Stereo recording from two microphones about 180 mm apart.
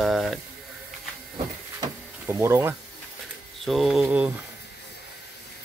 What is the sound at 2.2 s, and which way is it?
Speech, 15° right (ahead or behind).